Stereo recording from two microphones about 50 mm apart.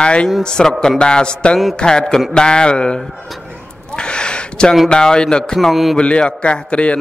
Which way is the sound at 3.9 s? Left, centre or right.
Centre.